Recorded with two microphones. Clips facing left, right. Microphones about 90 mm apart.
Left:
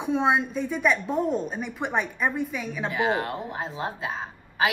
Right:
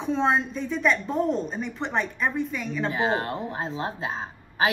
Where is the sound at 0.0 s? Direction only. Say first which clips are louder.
Even; 10° left (ahead or behind).